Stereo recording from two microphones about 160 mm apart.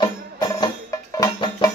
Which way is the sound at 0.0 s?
25° left (ahead or behind).